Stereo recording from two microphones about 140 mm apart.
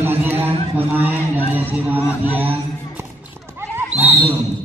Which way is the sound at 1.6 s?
15° right (ahead or behind).